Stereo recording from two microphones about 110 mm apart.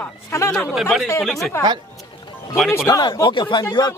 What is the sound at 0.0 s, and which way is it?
Speech, 20° left (ahead or behind).